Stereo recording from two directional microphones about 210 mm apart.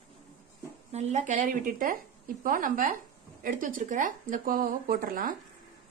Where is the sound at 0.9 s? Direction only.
35° right (ahead or behind).